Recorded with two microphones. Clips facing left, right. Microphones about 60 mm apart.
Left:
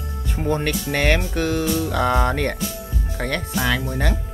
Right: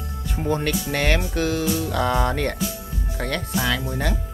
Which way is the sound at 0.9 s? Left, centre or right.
Centre.